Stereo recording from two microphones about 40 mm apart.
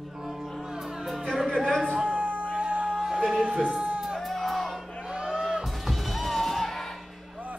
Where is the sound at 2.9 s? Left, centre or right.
Centre.